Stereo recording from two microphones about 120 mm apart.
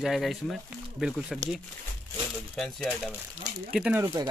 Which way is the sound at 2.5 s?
Centre (ahead or behind).